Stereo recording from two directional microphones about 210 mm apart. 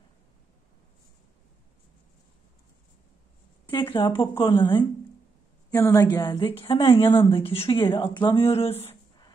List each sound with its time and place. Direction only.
3.7 s a woman's voice: 20° left (ahead or behind)